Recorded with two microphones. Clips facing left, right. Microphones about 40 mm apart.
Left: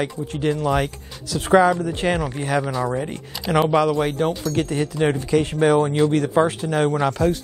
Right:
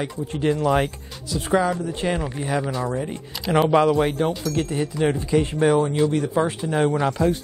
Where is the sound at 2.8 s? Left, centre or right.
Centre.